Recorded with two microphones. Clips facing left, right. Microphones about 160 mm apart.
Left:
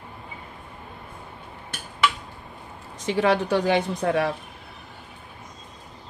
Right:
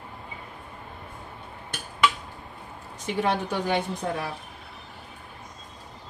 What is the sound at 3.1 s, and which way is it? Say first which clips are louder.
A woman's voice: left 5 dB; 90° left.